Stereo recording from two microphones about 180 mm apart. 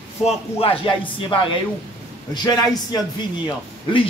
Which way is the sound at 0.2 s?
30° left (ahead or behind).